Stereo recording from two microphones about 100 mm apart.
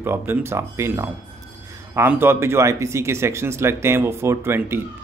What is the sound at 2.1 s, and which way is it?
Speech, 25° right (ahead or behind).